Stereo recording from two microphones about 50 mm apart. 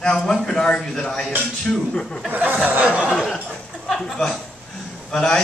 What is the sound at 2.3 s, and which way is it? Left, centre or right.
Speech, right.